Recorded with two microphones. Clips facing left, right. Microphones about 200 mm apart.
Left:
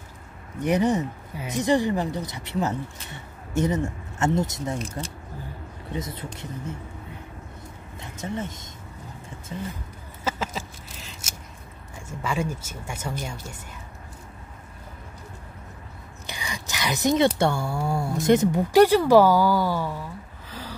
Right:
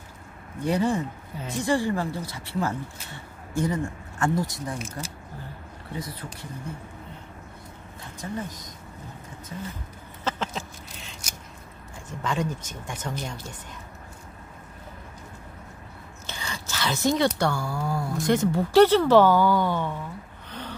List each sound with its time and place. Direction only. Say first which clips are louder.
0.6 s speech: left 2 dB; 20° left (ahead or behind)
5.9 s speech: left 3 dB; 25° left (ahead or behind)
8.2 s speech: left 2 dB; 25° left (ahead or behind)
10.2 s duck: left 1 dB; 5° left (ahead or behind)
12.1 s speech: even; 10° left (ahead or behind)
16.3 s speech: left 1 dB; 15° left (ahead or behind)
20.4 s gasp: right 1 dB; centre (ahead or behind)